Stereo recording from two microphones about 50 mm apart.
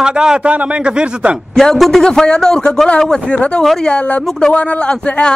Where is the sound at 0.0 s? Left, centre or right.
Centre.